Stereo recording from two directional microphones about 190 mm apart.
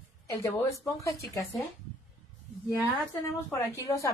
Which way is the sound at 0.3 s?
15° left (ahead or behind).